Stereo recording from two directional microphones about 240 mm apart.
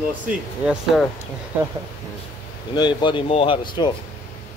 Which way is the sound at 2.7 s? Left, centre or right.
Centre.